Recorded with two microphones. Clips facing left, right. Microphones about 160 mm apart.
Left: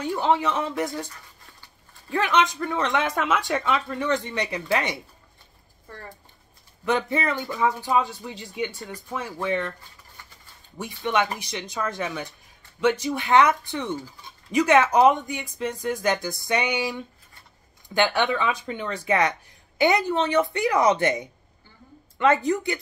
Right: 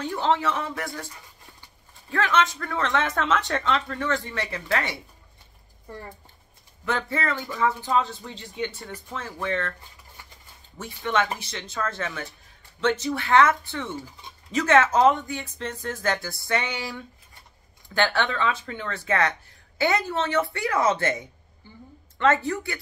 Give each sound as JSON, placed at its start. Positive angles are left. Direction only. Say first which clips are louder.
{"t": 0.0, "sound": "speech", "louder": "left 1 dB", "side_deg": 15}
{"t": 2.0, "sound": "speech", "louder": "left 1 dB", "side_deg": 15}
{"t": 5.9, "sound": "speech", "louder": "right 2 dB", "side_deg": -15}
{"t": 6.8, "sound": "speech", "louder": "left 3 dB", "side_deg": 20}
{"t": 10.8, "sound": "speech", "louder": "left 1 dB", "side_deg": 15}